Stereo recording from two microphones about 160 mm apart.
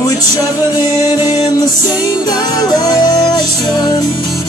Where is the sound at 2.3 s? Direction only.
25° left (ahead or behind).